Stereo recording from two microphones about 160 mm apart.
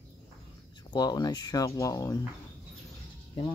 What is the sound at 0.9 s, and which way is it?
Speech, 25° left (ahead or behind).